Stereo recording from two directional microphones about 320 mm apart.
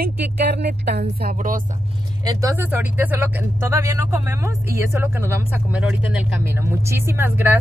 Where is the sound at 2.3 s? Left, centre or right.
Centre.